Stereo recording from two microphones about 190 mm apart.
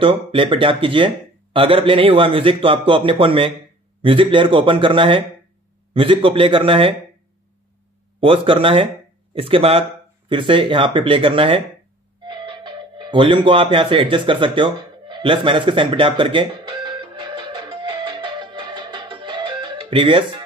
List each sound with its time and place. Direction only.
0.0 s speech: 25° right (ahead or behind)
8.2 s speech: 30° right (ahead or behind)
12.3 s music: 25° right (ahead or behind)